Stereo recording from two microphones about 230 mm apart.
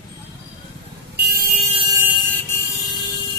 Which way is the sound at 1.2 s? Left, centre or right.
Right.